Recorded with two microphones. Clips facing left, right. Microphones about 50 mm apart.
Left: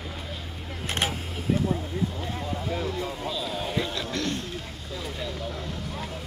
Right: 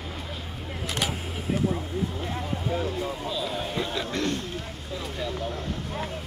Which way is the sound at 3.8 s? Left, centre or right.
Right.